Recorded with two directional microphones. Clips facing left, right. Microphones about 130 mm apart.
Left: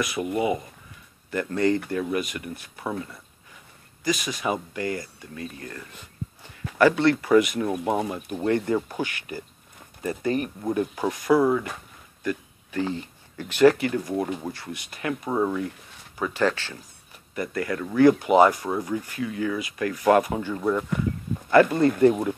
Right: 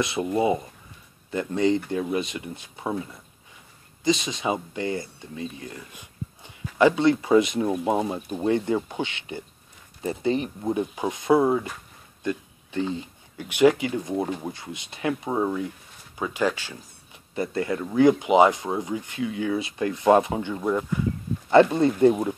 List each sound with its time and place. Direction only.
0.0 s speech: 25° right (ahead or behind)
12.2 s a sound: 20° right (ahead or behind)
12.9 s speech: 15° right (ahead or behind)
17.4 s speech: 25° right (ahead or behind)